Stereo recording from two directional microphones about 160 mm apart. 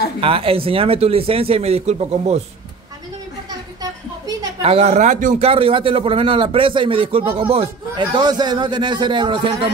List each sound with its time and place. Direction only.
0.2 s a man's voice: 35° right (ahead or behind)
4.6 s speech: 40° right (ahead or behind)
5.5 s a man's voice: 35° right (ahead or behind)